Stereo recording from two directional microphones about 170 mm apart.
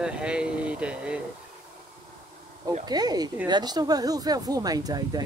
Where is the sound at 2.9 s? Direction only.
25° right (ahead or behind).